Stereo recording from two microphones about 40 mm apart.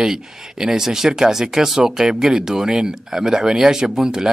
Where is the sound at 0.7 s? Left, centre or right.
Centre.